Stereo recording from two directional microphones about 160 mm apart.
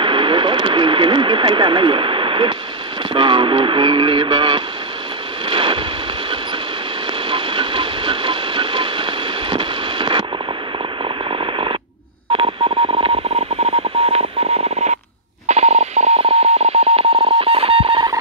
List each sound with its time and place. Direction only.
0.0 s radio: 30° right (ahead or behind)
3.1 s speech: 30° right (ahead or behind)
5.5 s a sound: 30° right (ahead or behind)
7.2 s a sound: 30° right (ahead or behind)
11.2 s radio: 30° right (ahead or behind)
12.3 s telephone dialing: 30° right (ahead or behind)